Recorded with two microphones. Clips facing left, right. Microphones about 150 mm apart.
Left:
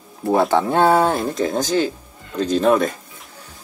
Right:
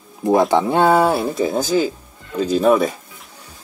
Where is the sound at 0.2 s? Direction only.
15° right (ahead or behind).